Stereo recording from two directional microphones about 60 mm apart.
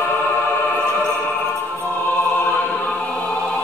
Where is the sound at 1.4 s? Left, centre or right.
Left.